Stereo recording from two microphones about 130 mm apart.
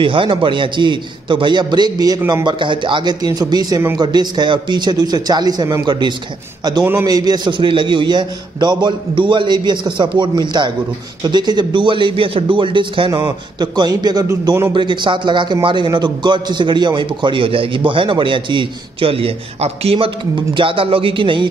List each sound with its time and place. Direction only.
0.0 s a man's voice: 40° right (ahead or behind)
6.8 s a man's voice: 15° right (ahead or behind)
7.1 s a man's voice: 30° right (ahead or behind)